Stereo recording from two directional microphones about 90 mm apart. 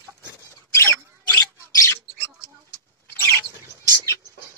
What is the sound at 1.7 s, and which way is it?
Bird, 40° left (ahead or behind).